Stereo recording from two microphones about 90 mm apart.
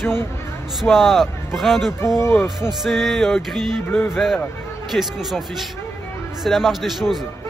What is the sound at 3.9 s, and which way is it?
Speech, 20° left (ahead or behind).